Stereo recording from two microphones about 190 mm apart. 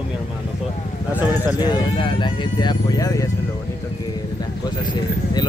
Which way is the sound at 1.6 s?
20° left (ahead or behind).